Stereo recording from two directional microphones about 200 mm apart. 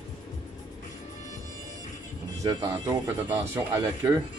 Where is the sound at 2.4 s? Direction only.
20° right (ahead or behind).